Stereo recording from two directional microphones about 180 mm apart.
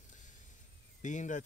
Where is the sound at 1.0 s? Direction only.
45° left (ahead or behind).